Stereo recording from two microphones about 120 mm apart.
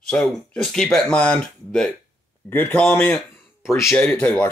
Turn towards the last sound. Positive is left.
turn(degrees=10)  # may be behind; listen again after turning